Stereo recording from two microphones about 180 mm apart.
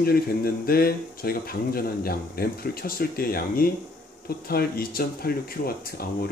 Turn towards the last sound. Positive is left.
turn(degrees=55)  # may be behind; listen again after turning